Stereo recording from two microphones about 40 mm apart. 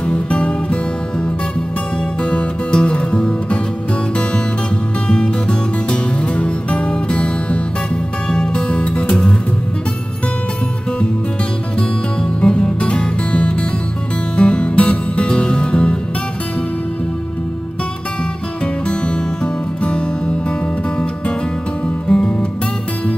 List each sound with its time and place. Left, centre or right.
0.0 s music: left
2.2 s music: left
5.0 s music: left
12.2 s music: left
18.9 s music: left
22.1 s music: centre